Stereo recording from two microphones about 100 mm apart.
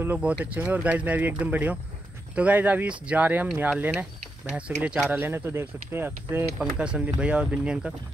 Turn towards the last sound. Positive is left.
turn(degrees=-10)  # may be behind; listen again after turning